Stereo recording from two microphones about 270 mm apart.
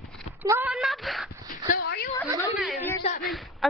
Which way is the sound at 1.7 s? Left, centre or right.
Left.